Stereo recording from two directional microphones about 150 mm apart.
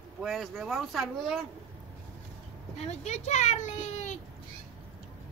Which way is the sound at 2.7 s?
50° left (ahead or behind).